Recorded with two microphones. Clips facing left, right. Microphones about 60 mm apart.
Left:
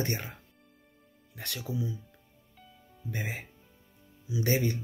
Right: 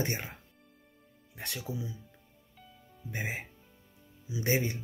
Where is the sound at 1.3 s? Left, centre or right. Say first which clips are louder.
Left 3 dB; right.